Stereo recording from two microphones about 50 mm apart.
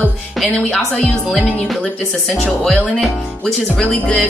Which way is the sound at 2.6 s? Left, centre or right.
Centre.